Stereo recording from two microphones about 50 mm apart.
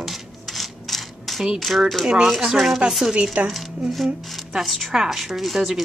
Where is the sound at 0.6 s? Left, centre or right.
Centre.